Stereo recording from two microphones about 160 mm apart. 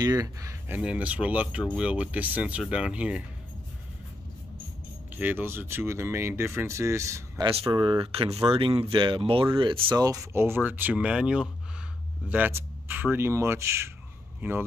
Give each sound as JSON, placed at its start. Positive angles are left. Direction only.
{"t": 0.0, "sound": "speech", "side_deg": -20}
{"t": 5.1, "sound": "speech", "side_deg": -10}
{"t": 7.4, "sound": "speech", "side_deg": -35}
{"t": 9.9, "sound": "speech", "side_deg": -20}